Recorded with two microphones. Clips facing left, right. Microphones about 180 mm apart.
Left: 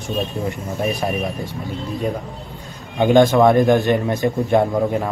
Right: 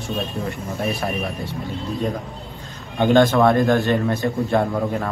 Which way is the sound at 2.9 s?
15° left (ahead or behind).